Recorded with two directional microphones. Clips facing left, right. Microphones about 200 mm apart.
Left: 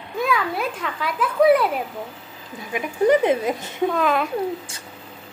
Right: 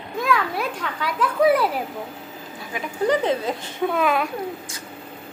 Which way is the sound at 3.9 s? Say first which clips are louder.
Right 1 dB; centre (ahead or behind).